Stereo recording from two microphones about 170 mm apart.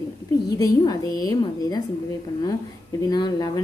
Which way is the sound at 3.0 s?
25° left (ahead or behind).